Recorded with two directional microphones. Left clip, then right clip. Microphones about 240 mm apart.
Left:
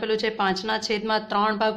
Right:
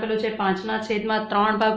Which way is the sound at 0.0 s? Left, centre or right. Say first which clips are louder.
Even; left.